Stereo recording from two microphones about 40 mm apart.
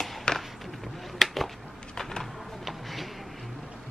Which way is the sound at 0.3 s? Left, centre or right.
Left.